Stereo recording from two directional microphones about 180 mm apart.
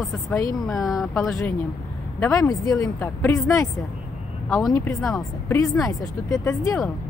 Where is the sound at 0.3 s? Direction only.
10° left (ahead or behind).